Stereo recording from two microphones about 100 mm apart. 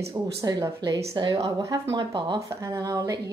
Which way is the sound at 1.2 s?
45° right (ahead or behind).